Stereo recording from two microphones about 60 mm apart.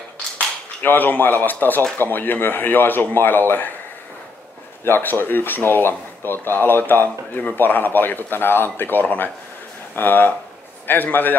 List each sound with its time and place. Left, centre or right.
0.8 s a man's voice: left
4.8 s a man's voice: left